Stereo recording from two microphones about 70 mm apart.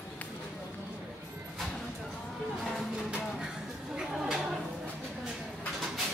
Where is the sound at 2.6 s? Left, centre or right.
Centre.